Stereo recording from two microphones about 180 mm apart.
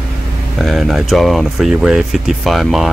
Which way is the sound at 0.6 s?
Centre (ahead or behind).